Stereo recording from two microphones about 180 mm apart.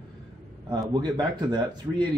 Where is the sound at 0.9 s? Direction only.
25° right (ahead or behind).